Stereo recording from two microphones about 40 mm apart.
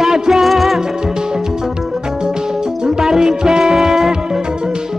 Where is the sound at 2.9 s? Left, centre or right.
Centre.